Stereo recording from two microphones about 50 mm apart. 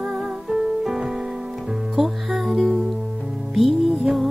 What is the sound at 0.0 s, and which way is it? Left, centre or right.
Music, centre.